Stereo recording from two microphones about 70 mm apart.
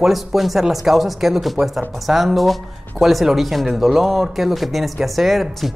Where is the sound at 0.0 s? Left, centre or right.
Centre.